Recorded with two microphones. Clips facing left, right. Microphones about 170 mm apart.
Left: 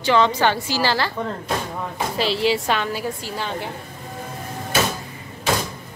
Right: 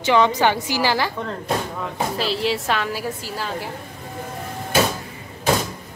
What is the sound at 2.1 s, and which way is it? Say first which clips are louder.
A woman's voice: left 4 dB; centre (ahead or behind).